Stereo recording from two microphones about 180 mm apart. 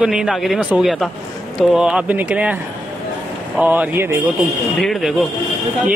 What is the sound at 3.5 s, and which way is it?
Speech, 10° right (ahead or behind).